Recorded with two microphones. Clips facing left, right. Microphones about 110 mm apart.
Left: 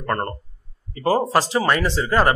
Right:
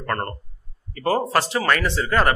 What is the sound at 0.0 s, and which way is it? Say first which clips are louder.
A man's voice: left 2 dB; 20° left (ahead or behind).